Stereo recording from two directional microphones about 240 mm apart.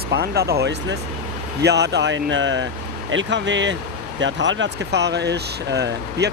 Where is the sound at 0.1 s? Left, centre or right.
Right.